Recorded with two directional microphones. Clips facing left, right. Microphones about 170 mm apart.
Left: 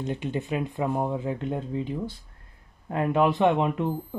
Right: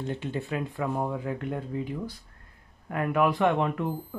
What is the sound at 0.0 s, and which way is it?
Speech, 15° left (ahead or behind).